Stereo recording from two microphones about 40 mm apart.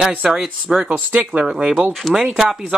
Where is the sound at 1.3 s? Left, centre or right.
Right.